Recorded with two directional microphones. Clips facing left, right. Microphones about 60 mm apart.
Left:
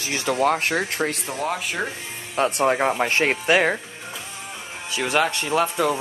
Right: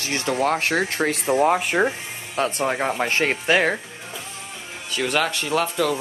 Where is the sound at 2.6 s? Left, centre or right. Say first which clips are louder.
Left 5 dB; centre.